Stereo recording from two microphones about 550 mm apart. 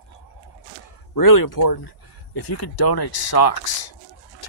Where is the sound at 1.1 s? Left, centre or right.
Left.